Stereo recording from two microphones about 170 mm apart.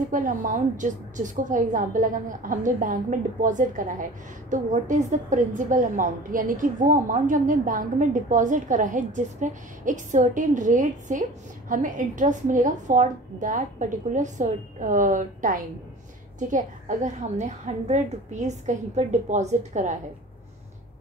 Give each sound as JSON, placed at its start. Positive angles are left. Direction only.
{"t": 0.1, "sound": "a woman's voice", "side_deg": -50}